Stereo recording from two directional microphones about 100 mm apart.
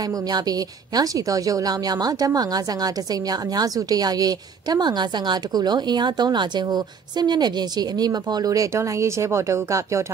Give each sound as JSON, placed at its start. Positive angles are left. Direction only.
{"t": 0.3, "sound": "a woman's voice", "side_deg": -40}